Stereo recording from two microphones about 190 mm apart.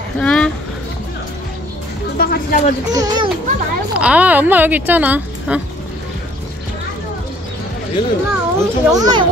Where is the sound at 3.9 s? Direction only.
5° right (ahead or behind).